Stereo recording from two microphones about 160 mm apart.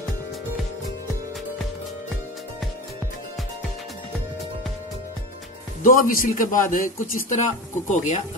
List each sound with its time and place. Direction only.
5.8 s a man's voice: 60° left (ahead or behind)